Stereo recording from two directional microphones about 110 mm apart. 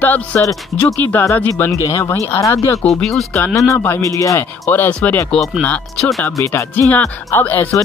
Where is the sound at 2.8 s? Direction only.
5° left (ahead or behind).